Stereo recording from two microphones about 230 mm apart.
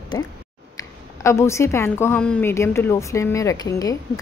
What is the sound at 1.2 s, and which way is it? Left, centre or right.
A woman's voice, centre.